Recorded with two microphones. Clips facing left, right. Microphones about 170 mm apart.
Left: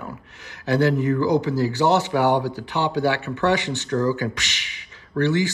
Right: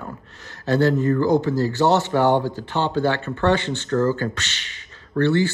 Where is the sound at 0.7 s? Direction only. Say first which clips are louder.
Right 1 dB; 15° left (ahead or behind).